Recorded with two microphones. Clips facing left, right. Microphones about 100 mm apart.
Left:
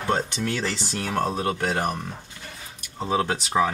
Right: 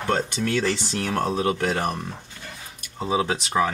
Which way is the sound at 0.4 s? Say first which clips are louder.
Right 4 dB; centre (ahead or behind).